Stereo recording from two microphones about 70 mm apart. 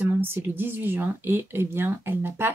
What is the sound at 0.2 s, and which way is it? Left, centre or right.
Speech, right.